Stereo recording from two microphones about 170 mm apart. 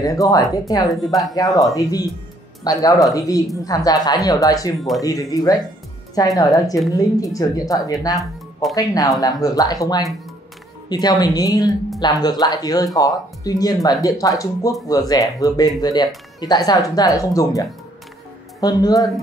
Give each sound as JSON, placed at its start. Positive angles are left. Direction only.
{"t": 0.0, "sound": "speech", "side_deg": 20}
{"t": 1.0, "sound": "speech", "side_deg": 0}
{"t": 1.3, "sound": "speech", "side_deg": 20}